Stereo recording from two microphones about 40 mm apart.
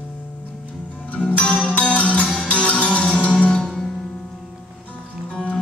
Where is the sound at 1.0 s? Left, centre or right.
Left.